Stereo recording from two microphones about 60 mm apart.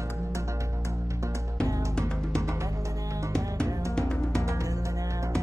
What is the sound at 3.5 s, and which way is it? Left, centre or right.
Music, centre.